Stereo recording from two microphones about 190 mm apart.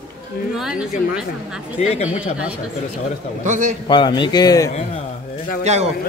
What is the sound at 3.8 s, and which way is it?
Speech, 25° left (ahead or behind).